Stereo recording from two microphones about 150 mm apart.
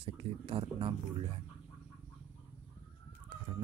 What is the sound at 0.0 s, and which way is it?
Speech, 35° right (ahead or behind).